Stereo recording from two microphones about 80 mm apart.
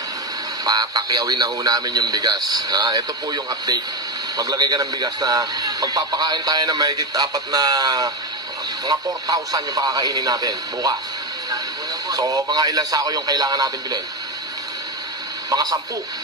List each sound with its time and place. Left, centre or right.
0.7 s speech: right
12.1 s speech: right
15.5 s a man's voice: right